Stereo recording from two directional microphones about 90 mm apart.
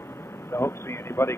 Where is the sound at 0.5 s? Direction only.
30° left (ahead or behind).